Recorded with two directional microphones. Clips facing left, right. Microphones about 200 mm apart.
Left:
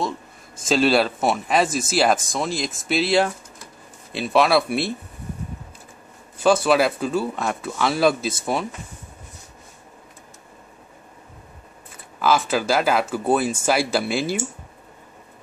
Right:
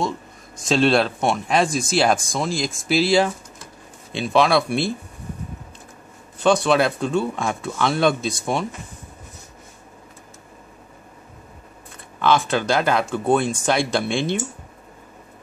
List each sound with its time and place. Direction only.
0.7 s speech: 5° left (ahead or behind)
6.3 s speech: 5° left (ahead or behind)
11.9 s speech: 5° left (ahead or behind)